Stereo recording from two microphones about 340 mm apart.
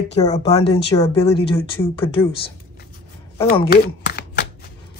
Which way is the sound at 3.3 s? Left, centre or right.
Centre.